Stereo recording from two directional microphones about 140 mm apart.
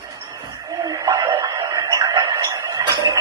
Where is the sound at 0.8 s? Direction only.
25° right (ahead or behind).